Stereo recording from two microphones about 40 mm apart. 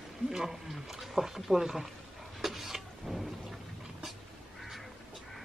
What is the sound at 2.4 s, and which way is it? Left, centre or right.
Vehicle, centre.